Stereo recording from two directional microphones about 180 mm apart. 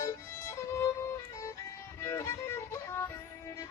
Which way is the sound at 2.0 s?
15° left (ahead or behind).